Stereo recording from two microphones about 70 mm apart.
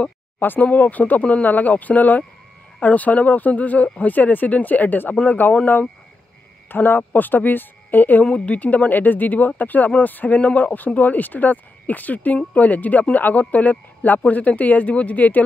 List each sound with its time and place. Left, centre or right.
0.4 s speech: left
6.7 s speech: left